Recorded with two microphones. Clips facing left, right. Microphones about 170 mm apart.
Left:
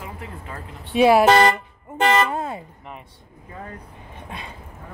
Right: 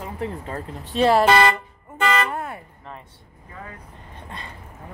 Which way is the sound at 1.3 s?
45° left (ahead or behind).